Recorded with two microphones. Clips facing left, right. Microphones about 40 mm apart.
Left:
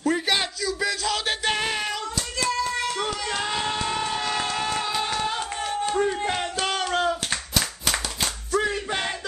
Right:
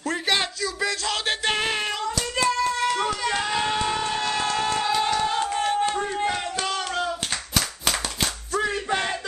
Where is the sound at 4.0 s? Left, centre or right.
Centre.